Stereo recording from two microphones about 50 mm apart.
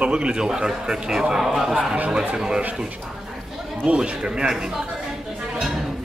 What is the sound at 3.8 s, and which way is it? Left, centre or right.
Speech, right.